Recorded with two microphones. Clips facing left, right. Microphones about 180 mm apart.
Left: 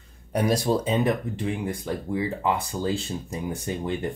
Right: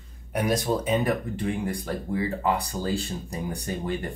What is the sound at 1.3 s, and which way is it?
Speech, 20° left (ahead or behind).